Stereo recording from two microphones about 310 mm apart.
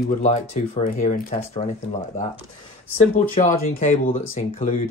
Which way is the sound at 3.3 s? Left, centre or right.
Left.